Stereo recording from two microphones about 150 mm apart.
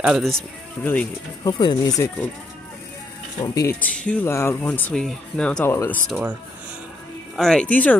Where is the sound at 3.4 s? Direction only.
20° left (ahead or behind).